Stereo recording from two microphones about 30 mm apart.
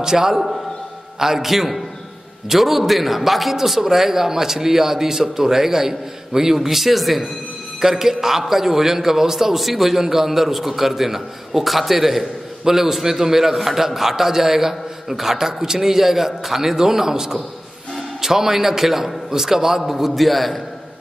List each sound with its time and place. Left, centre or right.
0.0 s a man's voice: centre